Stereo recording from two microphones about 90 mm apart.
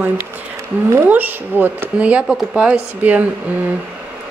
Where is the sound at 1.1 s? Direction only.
20° right (ahead or behind).